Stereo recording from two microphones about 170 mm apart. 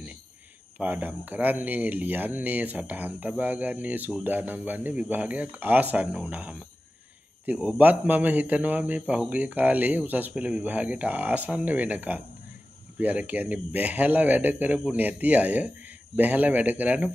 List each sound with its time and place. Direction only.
0.7 s speech: 10° right (ahead or behind)